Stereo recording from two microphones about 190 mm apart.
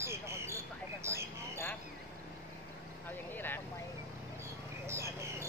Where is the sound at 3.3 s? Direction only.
10° left (ahead or behind).